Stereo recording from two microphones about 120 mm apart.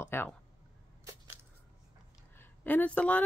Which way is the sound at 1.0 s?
25° right (ahead or behind).